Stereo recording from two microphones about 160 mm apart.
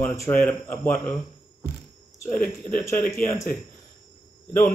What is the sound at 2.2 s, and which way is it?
Speech, 10° left (ahead or behind).